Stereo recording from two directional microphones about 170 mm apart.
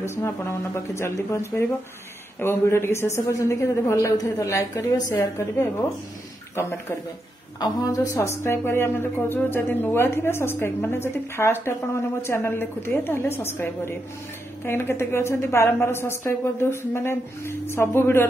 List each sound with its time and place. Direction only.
0.0 s a woman's voice: 15° left (ahead or behind)
2.4 s a woman's voice: 15° left (ahead or behind)